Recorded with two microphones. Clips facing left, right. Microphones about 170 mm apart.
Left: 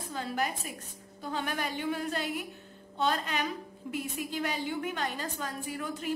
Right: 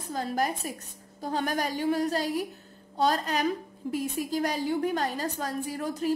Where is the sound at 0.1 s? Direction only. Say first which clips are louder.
Right 5 dB; 40° right (ahead or behind).